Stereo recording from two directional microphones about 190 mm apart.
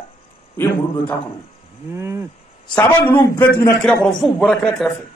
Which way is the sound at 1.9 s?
15° right (ahead or behind).